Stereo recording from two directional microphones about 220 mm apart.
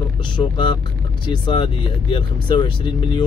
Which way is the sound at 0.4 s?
20° left (ahead or behind).